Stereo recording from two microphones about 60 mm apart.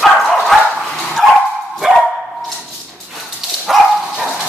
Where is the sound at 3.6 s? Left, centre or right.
Centre.